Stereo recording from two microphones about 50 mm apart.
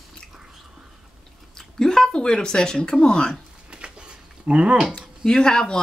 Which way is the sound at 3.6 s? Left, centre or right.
Right.